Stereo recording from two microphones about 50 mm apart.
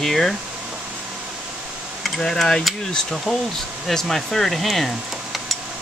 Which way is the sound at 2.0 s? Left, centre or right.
Centre.